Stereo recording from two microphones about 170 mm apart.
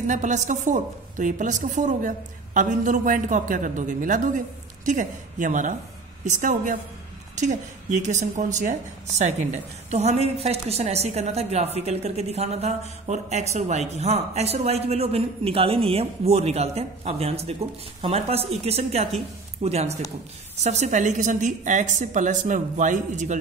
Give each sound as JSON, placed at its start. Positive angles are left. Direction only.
{"t": 0.0, "sound": "a woman's voice", "side_deg": -45}
{"t": 9.8, "sound": "a woman's voice", "side_deg": -40}